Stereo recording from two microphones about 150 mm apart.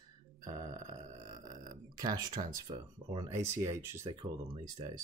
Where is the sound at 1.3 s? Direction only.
25° right (ahead or behind).